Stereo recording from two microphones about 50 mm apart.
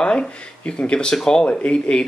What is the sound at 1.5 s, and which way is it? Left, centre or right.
Speech, left.